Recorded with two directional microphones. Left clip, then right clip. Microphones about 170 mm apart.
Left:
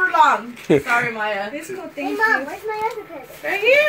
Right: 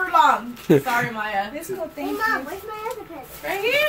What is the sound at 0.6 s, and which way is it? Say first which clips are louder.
Speech: left 2 dB; 20° right (ahead or behind).